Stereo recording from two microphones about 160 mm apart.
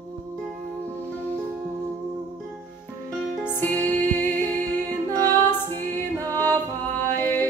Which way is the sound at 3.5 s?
10° left (ahead or behind).